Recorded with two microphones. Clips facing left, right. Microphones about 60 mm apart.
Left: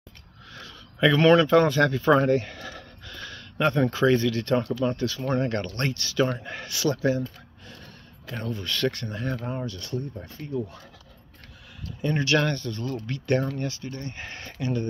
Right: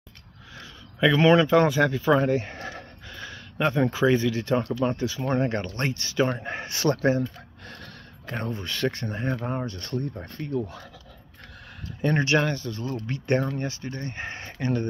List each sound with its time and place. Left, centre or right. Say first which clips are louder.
0.6 s a sound: even; centre
1.5 s speech: even; centre
2.4 s a sound: right 2 dB; right
3.1 s a sound: left 1 dB; centre
3.8 s speech: right 1 dB; centre; by 7.2 s right
7.6 s gasp: right 3 dB; right
8.3 s speech: right 1 dB; right
8.6 s speech: left 2 dB; centre
9.5 s speech: right 2 dB; right
10.2 s speech: right 2 dB; right
12.0 s speech: right 3 dB; right
12.4 s speech: even; centre
13.0 s speech: even; right
14.6 s speech: right 1 dB; right